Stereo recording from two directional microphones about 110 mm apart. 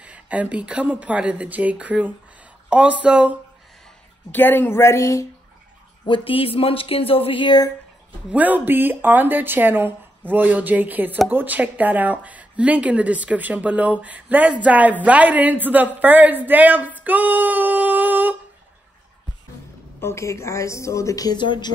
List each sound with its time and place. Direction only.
0.0 s speech: 10° right (ahead or behind)
4.3 s a woman's voice: 15° left (ahead or behind)
6.0 s speech: 50° left (ahead or behind)
8.3 s speech: 15° right (ahead or behind)
20.0 s a woman's voice: 25° left (ahead or behind); by 21.7 s 45° left (ahead or behind)